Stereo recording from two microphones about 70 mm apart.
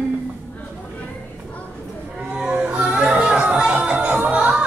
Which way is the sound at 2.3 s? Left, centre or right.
Centre.